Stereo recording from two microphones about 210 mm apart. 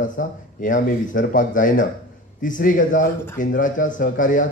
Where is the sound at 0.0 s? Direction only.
40° left (ahead or behind).